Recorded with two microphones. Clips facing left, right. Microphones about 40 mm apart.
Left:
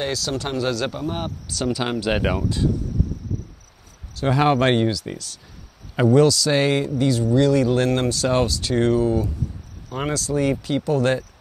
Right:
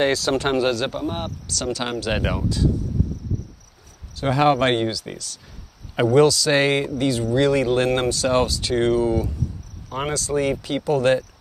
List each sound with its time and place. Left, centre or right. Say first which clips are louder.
0.0 s speech: right 5 dB; right
0.6 s speech: right 2 dB; centre
1.5 s speech: left 2 dB; centre
4.1 s speech: right 1 dB; centre
5.9 s speech: even; centre